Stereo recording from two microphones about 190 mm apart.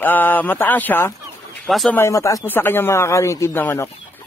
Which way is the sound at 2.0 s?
15° left (ahead or behind).